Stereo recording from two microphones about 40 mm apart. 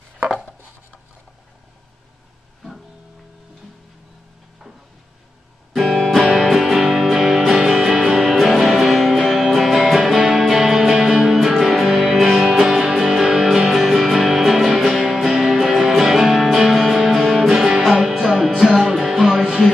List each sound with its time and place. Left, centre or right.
5.8 s music: centre
6.3 s music: centre